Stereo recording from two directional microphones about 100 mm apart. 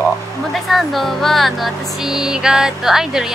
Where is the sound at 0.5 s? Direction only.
Centre (ahead or behind).